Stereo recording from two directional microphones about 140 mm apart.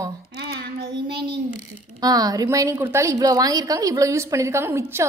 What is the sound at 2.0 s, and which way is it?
A woman's voice, 25° right (ahead or behind).